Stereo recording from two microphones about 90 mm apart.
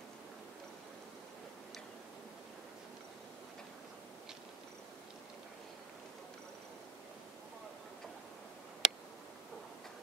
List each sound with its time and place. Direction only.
8.8 s tick: 5° right (ahead or behind)